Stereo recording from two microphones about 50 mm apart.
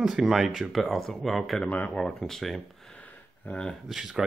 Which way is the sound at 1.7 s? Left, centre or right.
Left.